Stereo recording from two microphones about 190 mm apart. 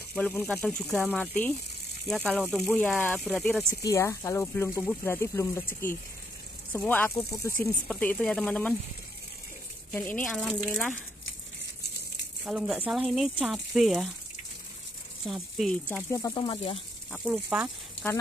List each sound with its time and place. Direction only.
0.1 s speech: 10° left (ahead or behind)
3.8 s speech: 15° left (ahead or behind)
9.9 s speech: 10° left (ahead or behind)
12.4 s speech: 5° right (ahead or behind)
15.2 s speech: centre (ahead or behind); by 16.8 s 25° left (ahead or behind)
17.1 s speech: 5° right (ahead or behind)